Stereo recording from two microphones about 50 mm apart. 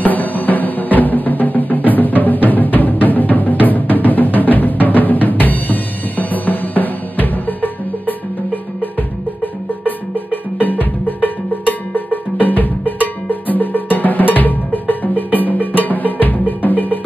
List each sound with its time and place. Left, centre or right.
0.0 s music: left
9.8 s music: left
11.2 s cowbell: left